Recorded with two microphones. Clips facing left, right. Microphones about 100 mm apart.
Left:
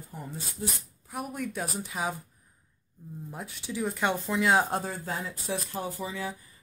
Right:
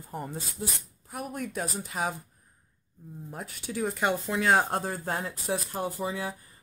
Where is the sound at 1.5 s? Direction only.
Centre (ahead or behind).